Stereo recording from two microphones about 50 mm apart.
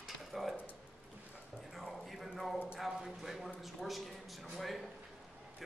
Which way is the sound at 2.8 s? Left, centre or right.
Centre.